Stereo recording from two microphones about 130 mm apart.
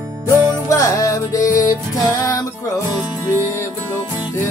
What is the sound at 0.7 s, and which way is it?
Music, 25° left (ahead or behind).